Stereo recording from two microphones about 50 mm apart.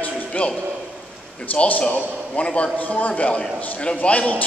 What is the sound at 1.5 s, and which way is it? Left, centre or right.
A man's voice, left.